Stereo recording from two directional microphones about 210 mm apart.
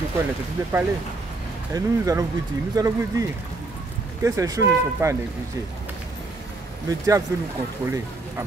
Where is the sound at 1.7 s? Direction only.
15° right (ahead or behind).